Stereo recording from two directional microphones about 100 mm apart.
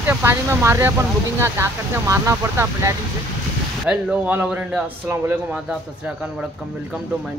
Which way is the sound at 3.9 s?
15° right (ahead or behind).